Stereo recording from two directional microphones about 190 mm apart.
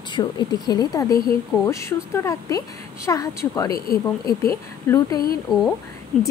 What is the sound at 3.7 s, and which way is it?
Speech, 50° left (ahead or behind).